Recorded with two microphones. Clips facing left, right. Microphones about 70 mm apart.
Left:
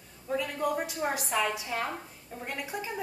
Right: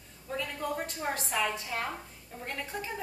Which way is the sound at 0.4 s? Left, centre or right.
Centre.